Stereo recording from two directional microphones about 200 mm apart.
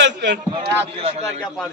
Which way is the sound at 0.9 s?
30° right (ahead or behind).